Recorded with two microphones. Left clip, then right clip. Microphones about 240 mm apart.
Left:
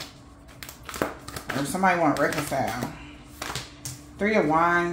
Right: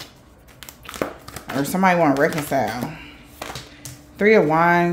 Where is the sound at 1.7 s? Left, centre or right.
Right.